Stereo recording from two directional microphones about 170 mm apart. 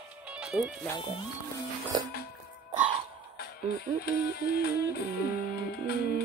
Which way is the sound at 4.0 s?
70° left (ahead or behind).